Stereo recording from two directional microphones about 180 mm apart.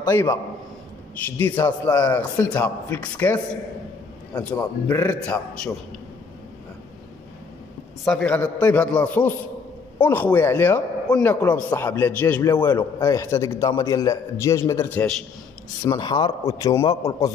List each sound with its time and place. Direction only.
0.0 s a man's voice: 15° left (ahead or behind)
1.4 s a man's voice: 15° left (ahead or behind)
4.4 s a man's voice: 10° left (ahead or behind)
8.0 s a man's voice: 5° left (ahead or behind)
12.4 s a man's voice: 25° left (ahead or behind)
15.8 s a man's voice: 25° left (ahead or behind)